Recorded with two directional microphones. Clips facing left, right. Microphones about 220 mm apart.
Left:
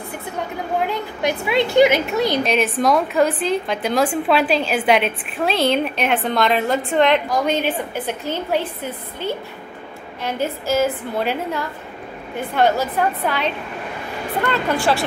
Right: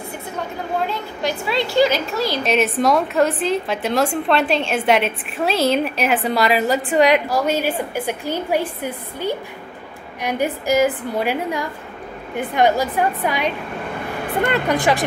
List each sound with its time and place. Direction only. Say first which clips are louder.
0.8 s a woman's voice: left 2 dB; 20° left (ahead or behind)
2.4 s a woman's voice: right 1 dB; centre (ahead or behind)
14.5 s a woman's voice: even; 15° right (ahead or behind)